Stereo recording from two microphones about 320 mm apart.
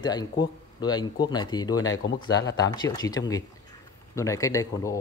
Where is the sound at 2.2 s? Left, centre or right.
Centre.